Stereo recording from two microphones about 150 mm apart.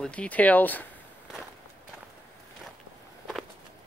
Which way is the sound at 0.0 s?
5° left (ahead or behind).